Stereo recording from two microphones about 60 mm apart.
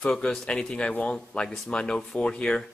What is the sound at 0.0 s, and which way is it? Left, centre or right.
Speech, centre.